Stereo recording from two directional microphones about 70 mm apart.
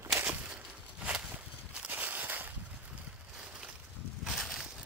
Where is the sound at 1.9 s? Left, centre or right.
Right.